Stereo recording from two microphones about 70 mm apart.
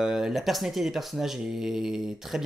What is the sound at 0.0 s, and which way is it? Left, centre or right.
Speech, centre.